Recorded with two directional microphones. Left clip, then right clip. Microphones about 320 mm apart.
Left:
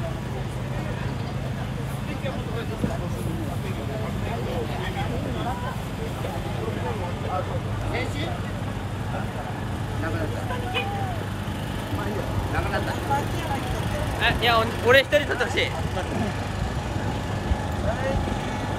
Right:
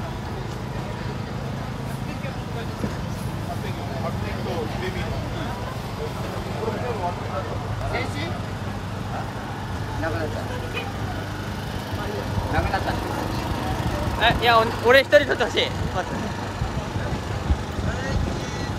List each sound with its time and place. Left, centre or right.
14.2 s speech: right